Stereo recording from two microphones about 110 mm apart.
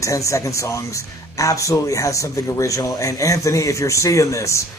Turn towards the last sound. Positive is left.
turn(degrees=30)  # may be behind; listen again after turning